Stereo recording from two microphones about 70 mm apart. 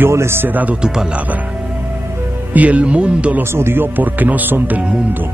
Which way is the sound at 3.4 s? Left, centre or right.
Right.